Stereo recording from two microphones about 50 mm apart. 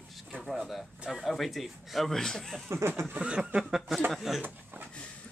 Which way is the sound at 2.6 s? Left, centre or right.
Right.